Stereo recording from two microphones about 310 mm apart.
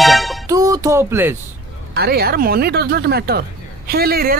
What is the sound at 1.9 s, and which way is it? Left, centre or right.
Speech, right.